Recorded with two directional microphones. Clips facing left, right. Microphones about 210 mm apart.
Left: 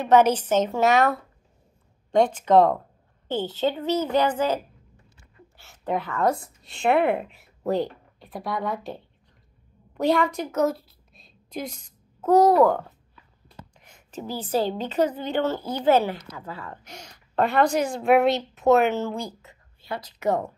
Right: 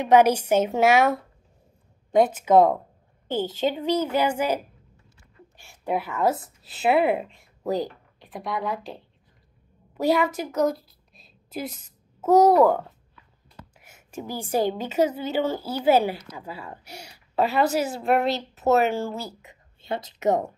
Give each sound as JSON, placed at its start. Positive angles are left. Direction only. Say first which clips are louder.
{"t": 0.0, "sound": "a woman's voice", "louder": "right 1 dB", "side_deg": -10}
{"t": 2.0, "sound": "a woman's voice", "louder": "right 1 dB", "side_deg": -5}
{"t": 5.6, "sound": "a woman's voice", "louder": "even", "side_deg": -10}
{"t": 9.9, "sound": "a woman's voice", "louder": "even", "side_deg": -5}
{"t": 19.8, "sound": "a woman's voice", "louder": "right 3 dB", "side_deg": -25}